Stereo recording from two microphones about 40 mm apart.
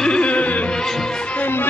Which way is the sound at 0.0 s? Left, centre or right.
Left.